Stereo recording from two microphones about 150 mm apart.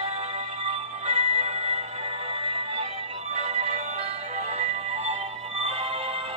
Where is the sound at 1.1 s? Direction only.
50° right (ahead or behind).